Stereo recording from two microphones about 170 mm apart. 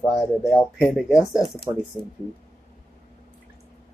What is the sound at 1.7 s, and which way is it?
Speech, 25° right (ahead or behind).